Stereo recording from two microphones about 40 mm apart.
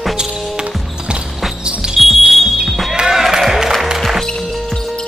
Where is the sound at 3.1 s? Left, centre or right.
Centre.